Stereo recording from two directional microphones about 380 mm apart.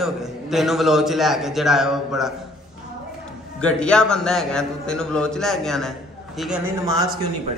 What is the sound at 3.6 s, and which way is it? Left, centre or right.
A man's voice, centre.